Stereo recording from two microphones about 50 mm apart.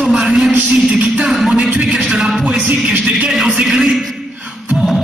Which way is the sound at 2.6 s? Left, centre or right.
Right.